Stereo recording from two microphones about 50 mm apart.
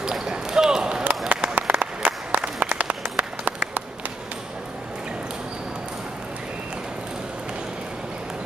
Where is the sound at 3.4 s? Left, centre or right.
Right.